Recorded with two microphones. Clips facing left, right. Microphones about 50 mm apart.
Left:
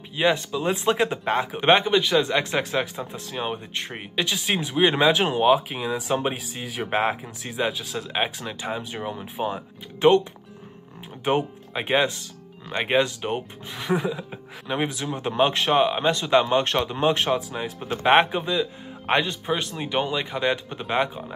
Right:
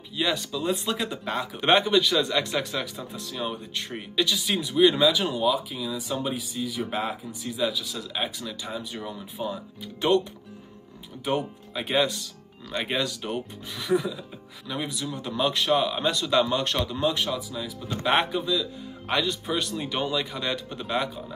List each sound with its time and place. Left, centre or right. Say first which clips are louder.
0.1 s speech: left 5 dB; left
11.2 s speech: left 4 dB; left
17.8 s speech: left 6 dB; left